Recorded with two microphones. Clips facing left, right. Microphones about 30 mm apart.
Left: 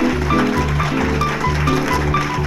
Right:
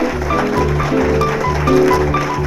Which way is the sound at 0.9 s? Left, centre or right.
Left.